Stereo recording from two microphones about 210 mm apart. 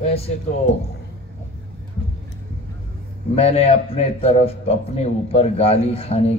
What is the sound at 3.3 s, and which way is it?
A man's voice, 30° left (ahead or behind).